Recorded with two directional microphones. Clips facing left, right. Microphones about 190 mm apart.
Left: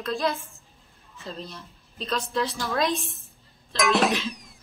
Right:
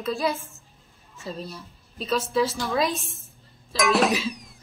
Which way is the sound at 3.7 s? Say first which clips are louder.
Right 1 dB; centre (ahead or behind).